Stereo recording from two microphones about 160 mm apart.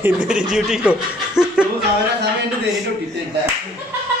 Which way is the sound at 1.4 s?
5° right (ahead or behind).